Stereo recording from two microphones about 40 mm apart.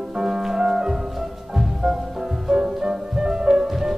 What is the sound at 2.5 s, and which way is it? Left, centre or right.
Music, centre.